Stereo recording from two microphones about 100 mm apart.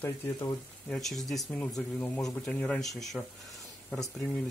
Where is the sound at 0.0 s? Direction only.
20° left (ahead or behind).